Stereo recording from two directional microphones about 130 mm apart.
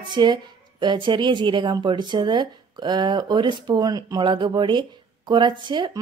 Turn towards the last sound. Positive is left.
turn(degrees=-35)  # may be behind; listen again after turning